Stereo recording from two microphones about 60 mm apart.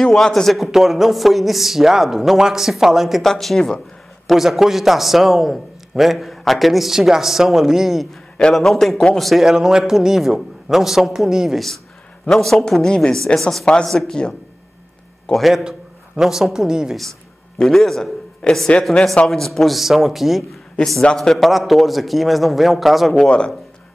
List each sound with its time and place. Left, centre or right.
0.1 s a man's voice: centre
4.3 s a man's voice: centre
8.1 s a man's voice: centre
9.4 s a man's voice: centre
12.3 s a man's voice: centre
16.2 s a man's voice: centre
17.6 s a man's voice: centre
21.0 s speech: centre
21.5 s a man's voice: centre
23.2 s speech: centre